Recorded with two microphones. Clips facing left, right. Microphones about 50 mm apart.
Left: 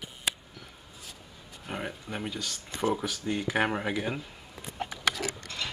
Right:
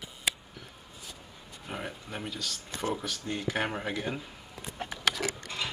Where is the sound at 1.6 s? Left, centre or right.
Centre.